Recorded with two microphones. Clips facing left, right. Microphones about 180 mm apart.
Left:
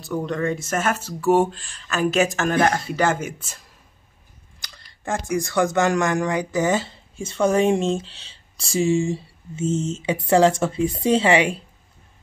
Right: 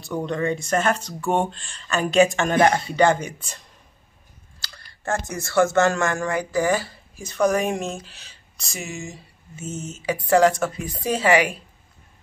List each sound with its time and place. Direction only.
0.0 s speech: centre (ahead or behind)
4.6 s speech: 15° left (ahead or behind)